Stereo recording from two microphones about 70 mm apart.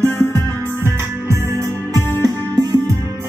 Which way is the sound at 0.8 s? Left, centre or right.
Right.